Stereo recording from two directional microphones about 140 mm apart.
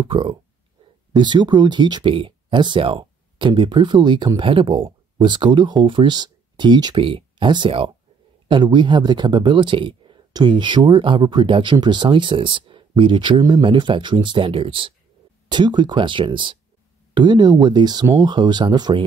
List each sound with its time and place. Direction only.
0.0 s speech: 35° right (ahead or behind)